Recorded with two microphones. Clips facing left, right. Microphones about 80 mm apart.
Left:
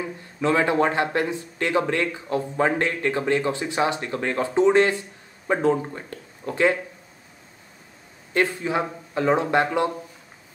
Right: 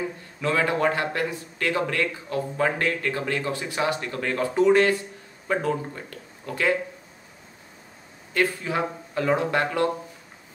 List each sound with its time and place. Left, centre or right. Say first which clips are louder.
0.4 s a man's voice: left 3 dB; left
8.3 s a man's voice: left 2 dB; left